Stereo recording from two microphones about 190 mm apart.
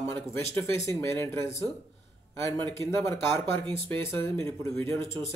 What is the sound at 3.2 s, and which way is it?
Speech, 25° right (ahead or behind).